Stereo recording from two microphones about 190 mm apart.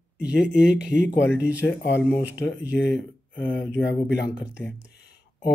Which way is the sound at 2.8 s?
10° left (ahead or behind).